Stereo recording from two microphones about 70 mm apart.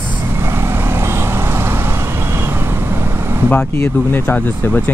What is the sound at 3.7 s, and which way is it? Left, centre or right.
Speech, left.